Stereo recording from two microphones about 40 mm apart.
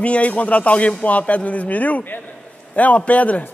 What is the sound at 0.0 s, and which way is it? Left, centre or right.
A man's voice, left.